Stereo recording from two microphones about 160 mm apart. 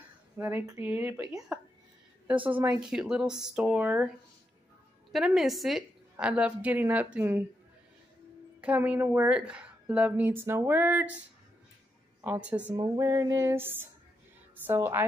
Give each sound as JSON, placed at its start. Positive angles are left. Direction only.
{"t": 0.4, "sound": "a woman's voice", "side_deg": -10}
{"t": 2.7, "sound": "speech", "side_deg": -5}
{"t": 5.1, "sound": "a woman's voice", "side_deg": 0}
{"t": 8.5, "sound": "a woman's voice", "side_deg": -10}
{"t": 12.2, "sound": "a woman's voice", "side_deg": -10}
{"t": 12.7, "sound": "music", "side_deg": -20}
{"t": 14.6, "sound": "a woman's voice", "side_deg": -15}